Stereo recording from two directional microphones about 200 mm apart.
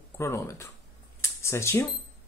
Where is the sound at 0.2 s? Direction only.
15° left (ahead or behind).